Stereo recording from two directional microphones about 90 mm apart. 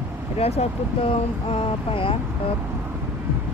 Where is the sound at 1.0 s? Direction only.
90° left.